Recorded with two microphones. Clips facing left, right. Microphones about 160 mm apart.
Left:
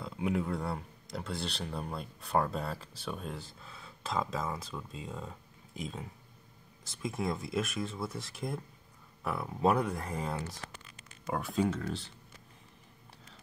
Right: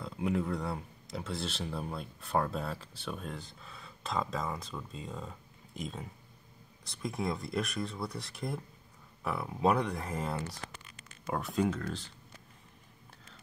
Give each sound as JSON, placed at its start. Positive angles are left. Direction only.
{"t": 0.0, "sound": "speech", "side_deg": 0}